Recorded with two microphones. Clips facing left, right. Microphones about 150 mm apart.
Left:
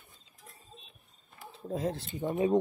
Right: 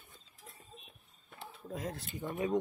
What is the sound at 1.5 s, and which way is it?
Speech, 30° left (ahead or behind).